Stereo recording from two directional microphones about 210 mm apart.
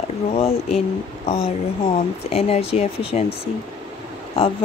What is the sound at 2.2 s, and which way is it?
Speech, 30° left (ahead or behind).